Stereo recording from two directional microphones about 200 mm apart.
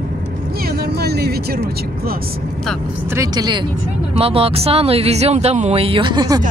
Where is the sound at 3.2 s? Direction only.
20° right (ahead or behind).